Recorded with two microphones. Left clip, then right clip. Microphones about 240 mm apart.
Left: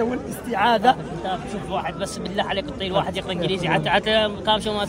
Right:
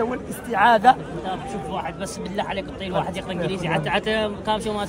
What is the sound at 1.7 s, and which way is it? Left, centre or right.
Speech, centre.